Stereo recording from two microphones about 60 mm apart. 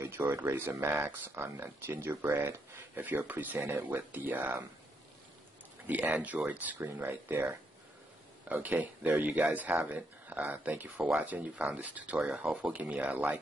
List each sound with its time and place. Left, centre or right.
0.0 s speech: right
3.0 s speech: right
5.9 s speech: right
8.5 s speech: right
12.2 s speech: centre